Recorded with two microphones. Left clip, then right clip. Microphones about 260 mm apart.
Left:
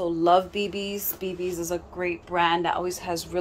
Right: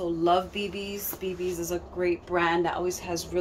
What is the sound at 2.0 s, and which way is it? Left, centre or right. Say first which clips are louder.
Speech: left 1 dB; centre.